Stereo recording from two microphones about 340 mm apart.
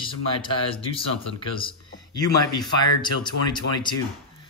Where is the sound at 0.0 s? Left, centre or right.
Centre.